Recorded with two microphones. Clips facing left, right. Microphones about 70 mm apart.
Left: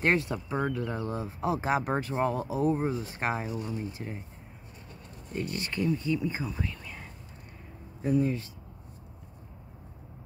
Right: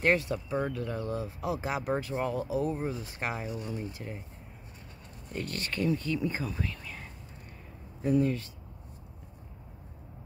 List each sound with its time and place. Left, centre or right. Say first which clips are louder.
0.0 s speech: even; left
5.3 s speech: left 2 dB; centre
8.2 s speech: even; left